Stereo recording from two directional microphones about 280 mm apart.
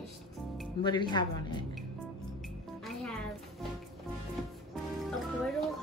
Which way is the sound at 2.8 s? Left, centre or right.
Centre.